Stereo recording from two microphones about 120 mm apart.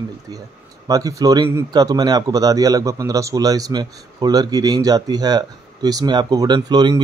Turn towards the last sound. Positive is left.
turn(degrees=-35)  # may be behind; listen again after turning